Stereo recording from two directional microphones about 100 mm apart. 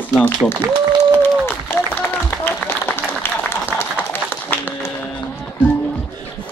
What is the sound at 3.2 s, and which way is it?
Applause, 20° left (ahead or behind).